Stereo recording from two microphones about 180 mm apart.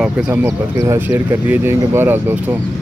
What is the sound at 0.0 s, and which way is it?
Speech, 10° right (ahead or behind).